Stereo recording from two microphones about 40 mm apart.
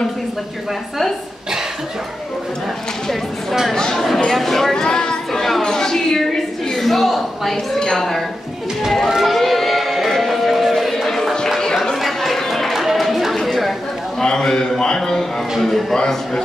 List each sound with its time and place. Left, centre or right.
3.9 s a woman's voice: centre
4.7 s a sound: centre
7.8 s a woman's voice: centre
9.2 s music: centre
11.6 s chatter: centre
12.7 s a sound: centre
13.4 s chatter: centre
14.2 s a sound: centre
15.6 s speech: centre